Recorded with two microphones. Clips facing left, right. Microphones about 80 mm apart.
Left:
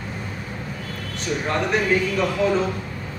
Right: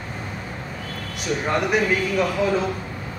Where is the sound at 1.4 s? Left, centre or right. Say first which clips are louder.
Right 1 dB; centre.